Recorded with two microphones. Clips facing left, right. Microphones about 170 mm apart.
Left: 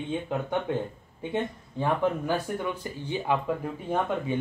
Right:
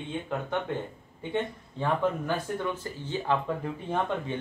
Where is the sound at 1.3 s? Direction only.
10° left (ahead or behind).